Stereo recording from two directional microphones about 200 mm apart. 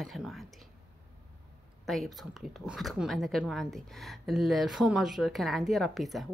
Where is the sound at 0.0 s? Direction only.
Centre (ahead or behind).